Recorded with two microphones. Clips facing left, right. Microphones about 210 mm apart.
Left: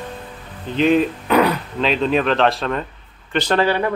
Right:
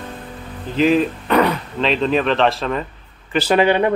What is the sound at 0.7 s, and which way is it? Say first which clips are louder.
Speech: even; centre (ahead or behind).